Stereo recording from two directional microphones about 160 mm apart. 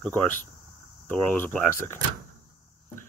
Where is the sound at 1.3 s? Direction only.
10° left (ahead or behind).